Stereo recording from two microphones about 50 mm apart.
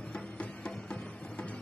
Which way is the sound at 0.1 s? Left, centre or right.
Left.